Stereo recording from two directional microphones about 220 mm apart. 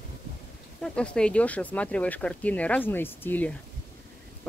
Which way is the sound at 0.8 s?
5° left (ahead or behind).